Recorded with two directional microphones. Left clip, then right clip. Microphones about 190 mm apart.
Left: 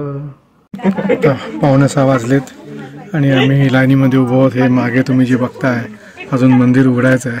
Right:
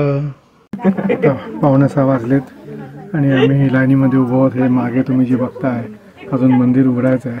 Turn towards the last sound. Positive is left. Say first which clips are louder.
# left 3 dB
turn(degrees=10)  # may be behind; listen again after turning